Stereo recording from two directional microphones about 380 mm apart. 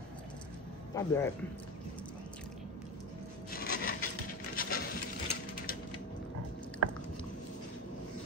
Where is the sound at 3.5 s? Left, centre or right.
Left.